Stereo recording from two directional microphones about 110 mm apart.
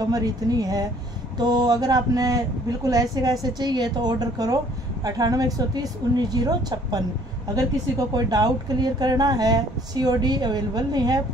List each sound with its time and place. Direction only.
0.1 s a man's voice: 35° right (ahead or behind)
8.1 s a man's voice: 35° right (ahead or behind)